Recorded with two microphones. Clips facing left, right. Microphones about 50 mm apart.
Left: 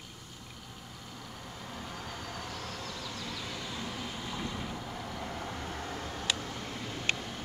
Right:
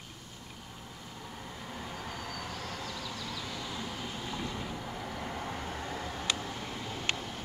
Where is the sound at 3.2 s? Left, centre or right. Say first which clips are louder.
Even; centre.